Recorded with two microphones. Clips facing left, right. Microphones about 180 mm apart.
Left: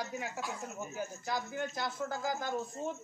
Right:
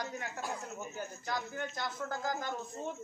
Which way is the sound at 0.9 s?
5° left (ahead or behind).